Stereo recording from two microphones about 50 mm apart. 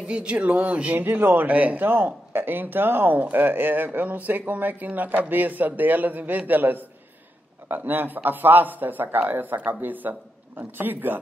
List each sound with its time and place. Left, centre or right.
0.0 s speech: right
0.9 s a man's voice: right
1.5 s speech: right
1.9 s speech: right